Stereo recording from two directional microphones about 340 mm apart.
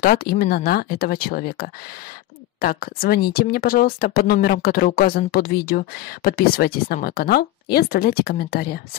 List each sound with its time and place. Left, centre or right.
0.0 s speech: left